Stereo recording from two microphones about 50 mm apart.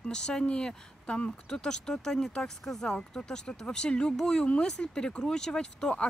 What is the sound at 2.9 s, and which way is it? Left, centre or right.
Speech, centre.